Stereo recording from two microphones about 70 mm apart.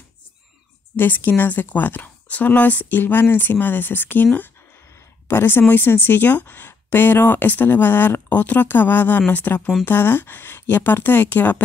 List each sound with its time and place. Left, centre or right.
0.9 s a woman's voice: left